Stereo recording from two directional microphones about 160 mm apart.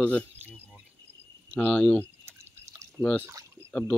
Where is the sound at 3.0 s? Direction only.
10° left (ahead or behind).